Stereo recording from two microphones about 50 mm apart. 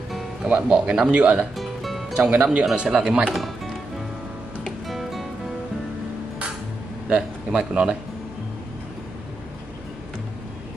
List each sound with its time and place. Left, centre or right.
0.5 s speech: right
1.6 s music: centre
2.3 s speech: right
3.3 s music: centre
4.8 s music: centre
7.1 s speech: right